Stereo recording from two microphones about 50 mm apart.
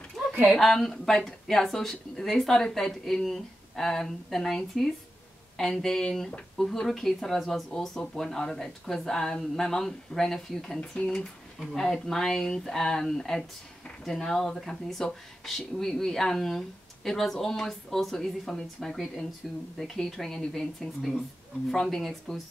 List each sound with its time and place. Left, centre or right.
0.6 s speech: centre
5.6 s speech: centre
10.8 s speech: left
11.1 s speech: centre